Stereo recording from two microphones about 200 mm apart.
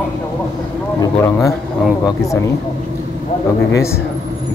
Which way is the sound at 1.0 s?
15° left (ahead or behind).